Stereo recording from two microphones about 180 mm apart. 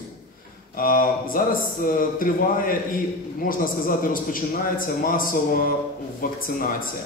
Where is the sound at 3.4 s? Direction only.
50° left (ahead or behind).